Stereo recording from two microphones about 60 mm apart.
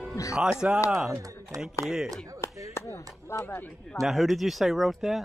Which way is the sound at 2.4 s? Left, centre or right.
Left.